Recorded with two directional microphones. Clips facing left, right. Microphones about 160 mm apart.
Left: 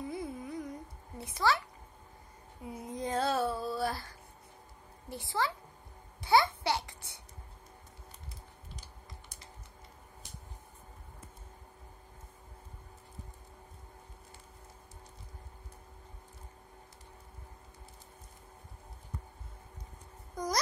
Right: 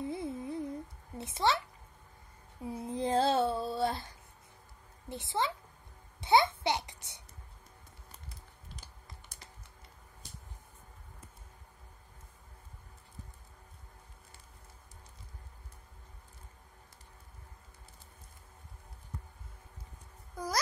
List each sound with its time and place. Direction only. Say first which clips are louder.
0.0 s a sound: right 2 dB; 25° right (ahead or behind)
2.6 s child singing: right 4 dB; 30° right (ahead or behind)
5.1 s a child's voice: even; 20° right (ahead or behind)
6.2 s babbling: even; 20° right (ahead or behind)
20.3 s music: left 1 dB; 5° right (ahead or behind)